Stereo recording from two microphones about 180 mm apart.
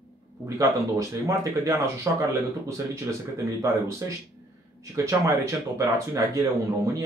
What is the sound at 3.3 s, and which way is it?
Speech, 15° right (ahead or behind).